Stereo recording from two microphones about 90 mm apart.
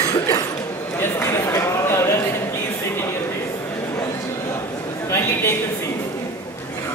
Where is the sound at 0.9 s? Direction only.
25° left (ahead or behind).